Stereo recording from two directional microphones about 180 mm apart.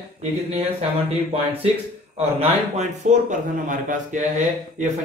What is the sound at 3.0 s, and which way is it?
A man's voice, 40° right (ahead or behind).